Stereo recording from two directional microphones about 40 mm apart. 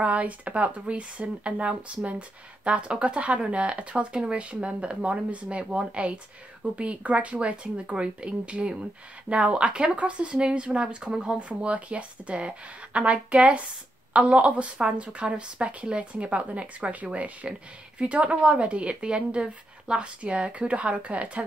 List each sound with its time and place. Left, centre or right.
0.0 s a woman's voice: right